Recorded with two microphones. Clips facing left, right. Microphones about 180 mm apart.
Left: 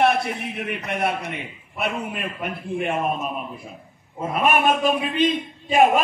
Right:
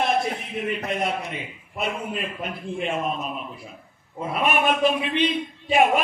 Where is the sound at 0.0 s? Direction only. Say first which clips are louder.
Left 3 dB; 70° left (ahead or behind).